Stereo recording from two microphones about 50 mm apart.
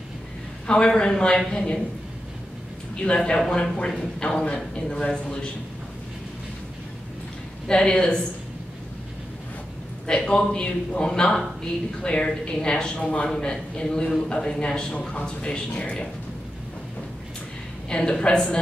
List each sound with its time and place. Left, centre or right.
0.7 s a man's voice: centre
3.0 s a man's voice: centre
7.6 s a man's voice: centre
10.0 s a man's voice: centre
17.8 s a man's voice: centre